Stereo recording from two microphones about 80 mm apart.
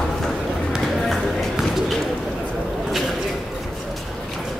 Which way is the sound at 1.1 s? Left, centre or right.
Centre.